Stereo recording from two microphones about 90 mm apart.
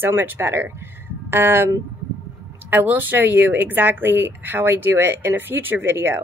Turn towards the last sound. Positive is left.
turn(degrees=-25)  # may be behind; listen again after turning